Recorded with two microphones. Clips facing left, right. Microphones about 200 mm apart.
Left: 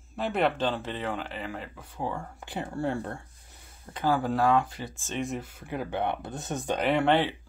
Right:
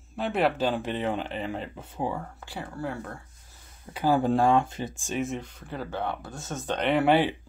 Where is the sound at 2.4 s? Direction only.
20° left (ahead or behind).